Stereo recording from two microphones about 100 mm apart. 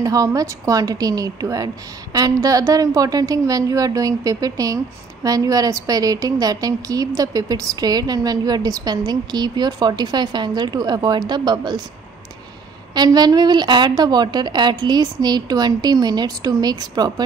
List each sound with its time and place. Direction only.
0.0 s a woman's voice: 35° right (ahead or behind)
12.9 s a woman's voice: 45° right (ahead or behind)